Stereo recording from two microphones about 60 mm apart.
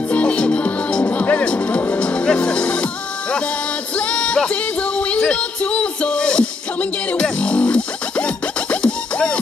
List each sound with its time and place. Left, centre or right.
0.1 s music: left